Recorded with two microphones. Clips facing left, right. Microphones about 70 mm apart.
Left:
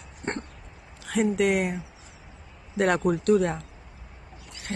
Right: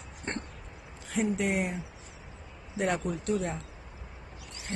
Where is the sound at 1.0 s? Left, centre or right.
Left.